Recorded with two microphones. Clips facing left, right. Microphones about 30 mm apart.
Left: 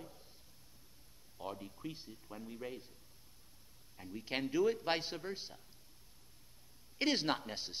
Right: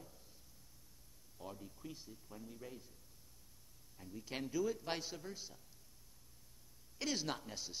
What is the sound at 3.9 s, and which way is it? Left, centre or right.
A man's voice, left.